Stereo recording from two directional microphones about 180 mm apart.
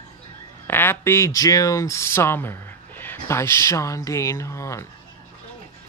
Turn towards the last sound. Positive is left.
turn(degrees=15)  # may be behind; listen again after turning